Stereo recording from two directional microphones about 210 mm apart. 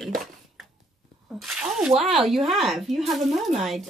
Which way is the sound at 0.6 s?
Centre (ahead or behind).